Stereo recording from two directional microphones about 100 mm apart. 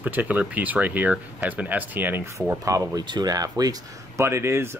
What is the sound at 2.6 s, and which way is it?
Speech, 35° right (ahead or behind).